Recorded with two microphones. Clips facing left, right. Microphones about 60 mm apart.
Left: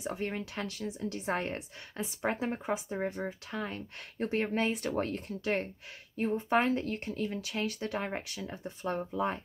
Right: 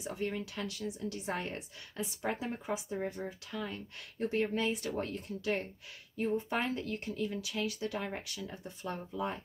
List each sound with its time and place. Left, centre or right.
0.0 s a woman's voice: left
8.6 s a woman's voice: left